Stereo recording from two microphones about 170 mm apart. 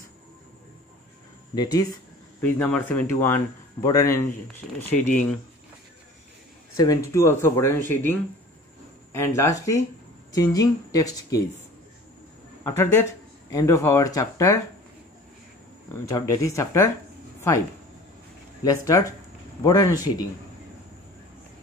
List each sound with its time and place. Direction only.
1.5 s speech: 25° left (ahead or behind)
2.4 s speech: 10° left (ahead or behind)
4.9 s speech: 10° left (ahead or behind)
6.8 s speech: 20° left (ahead or behind)
13.5 s speech: 20° left (ahead or behind)
15.9 s speech: 20° left (ahead or behind)
18.6 s speech: 20° left (ahead or behind)